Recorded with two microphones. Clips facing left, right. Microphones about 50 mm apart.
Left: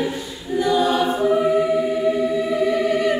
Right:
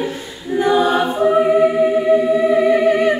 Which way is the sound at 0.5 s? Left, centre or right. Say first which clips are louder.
Right 4 dB; right.